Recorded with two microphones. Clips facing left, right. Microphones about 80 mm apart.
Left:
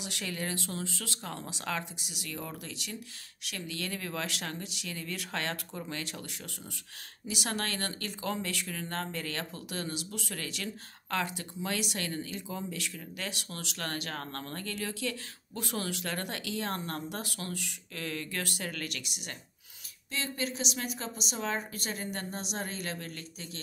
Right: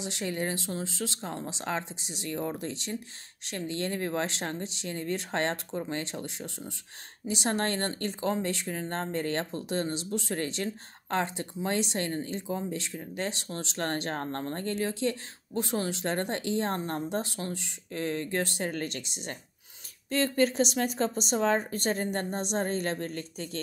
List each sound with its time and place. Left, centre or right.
0.0 s a woman's voice: right
20.1 s a woman's voice: right